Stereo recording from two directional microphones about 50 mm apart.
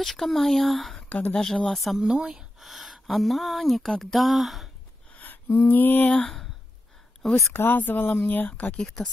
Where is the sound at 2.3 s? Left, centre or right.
Centre.